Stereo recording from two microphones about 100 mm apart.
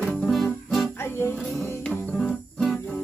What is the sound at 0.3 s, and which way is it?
Music, centre (ahead or behind).